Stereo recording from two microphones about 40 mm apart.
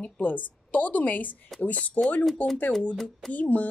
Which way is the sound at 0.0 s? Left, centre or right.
Left.